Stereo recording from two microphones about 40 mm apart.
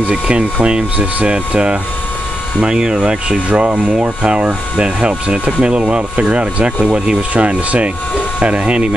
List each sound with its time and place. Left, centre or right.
0.3 s speech: right